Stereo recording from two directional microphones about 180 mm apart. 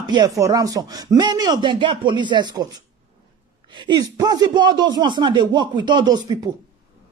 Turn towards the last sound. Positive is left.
turn(degrees=-25)  # may be behind; listen again after turning